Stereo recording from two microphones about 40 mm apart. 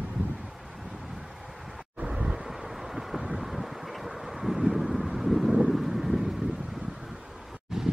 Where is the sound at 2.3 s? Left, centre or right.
Centre.